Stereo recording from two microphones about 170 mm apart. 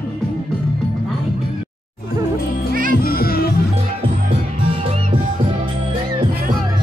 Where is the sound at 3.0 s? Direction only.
60° left (ahead or behind).